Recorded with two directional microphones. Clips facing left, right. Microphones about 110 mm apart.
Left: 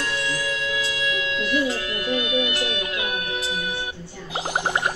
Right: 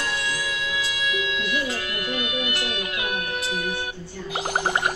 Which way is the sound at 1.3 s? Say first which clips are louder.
Left 4 dB; 30° left (ahead or behind).